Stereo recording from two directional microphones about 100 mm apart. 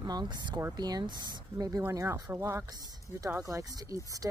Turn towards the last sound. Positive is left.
turn(degrees=-35)  # may be behind; listen again after turning